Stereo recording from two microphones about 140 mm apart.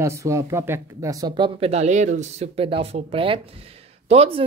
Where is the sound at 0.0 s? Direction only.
20° right (ahead or behind).